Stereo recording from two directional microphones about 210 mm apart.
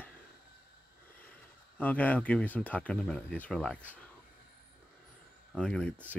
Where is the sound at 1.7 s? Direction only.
10° left (ahead or behind).